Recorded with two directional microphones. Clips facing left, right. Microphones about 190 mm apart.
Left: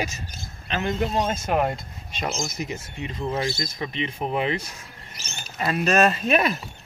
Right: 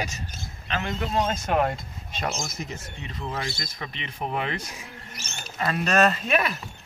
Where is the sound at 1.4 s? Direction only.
10° left (ahead or behind).